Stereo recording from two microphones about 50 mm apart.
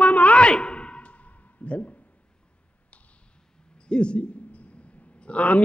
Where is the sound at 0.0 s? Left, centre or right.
Left.